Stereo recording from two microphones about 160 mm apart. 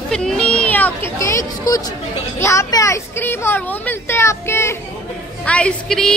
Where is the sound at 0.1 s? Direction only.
5° left (ahead or behind).